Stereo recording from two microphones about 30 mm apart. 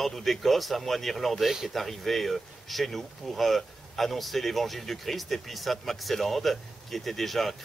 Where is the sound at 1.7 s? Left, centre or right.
Centre.